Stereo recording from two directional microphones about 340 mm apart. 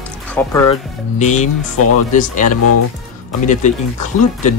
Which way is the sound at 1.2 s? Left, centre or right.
Left.